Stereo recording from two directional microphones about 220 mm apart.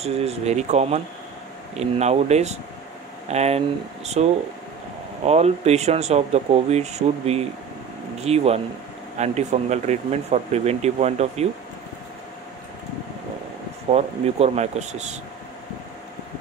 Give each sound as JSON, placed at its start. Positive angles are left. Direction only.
{"t": 0.0, "sound": "speech", "side_deg": -30}
{"t": 13.8, "sound": "speech", "side_deg": -30}